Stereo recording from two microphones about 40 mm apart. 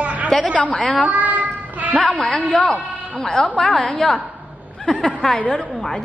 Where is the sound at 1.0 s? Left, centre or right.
Right.